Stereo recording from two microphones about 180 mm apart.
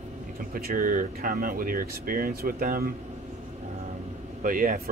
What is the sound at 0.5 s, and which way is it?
Speech, 50° right (ahead or behind).